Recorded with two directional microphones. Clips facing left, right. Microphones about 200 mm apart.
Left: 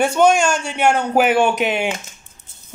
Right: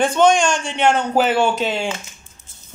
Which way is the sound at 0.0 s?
10° left (ahead or behind).